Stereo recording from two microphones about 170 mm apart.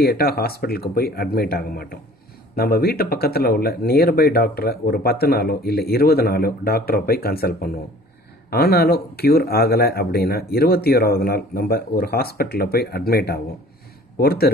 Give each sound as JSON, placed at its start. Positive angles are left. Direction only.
{"t": 0.0, "sound": "speech", "side_deg": 65}